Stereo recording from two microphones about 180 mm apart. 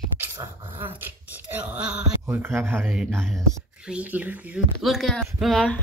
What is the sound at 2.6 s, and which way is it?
Speech, 10° right (ahead or behind).